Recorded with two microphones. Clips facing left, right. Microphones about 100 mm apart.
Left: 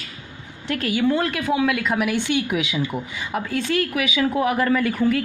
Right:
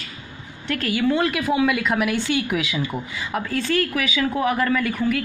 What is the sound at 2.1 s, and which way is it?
Speech, 15° left (ahead or behind).